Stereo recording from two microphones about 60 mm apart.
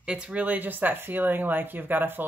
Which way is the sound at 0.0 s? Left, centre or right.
Centre.